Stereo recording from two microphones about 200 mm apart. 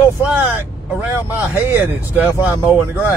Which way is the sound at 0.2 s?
10° right (ahead or behind).